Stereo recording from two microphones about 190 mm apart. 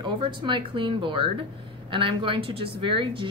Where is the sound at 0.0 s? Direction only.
25° right (ahead or behind).